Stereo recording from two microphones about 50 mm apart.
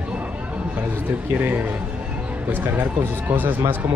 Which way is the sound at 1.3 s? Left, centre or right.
Right.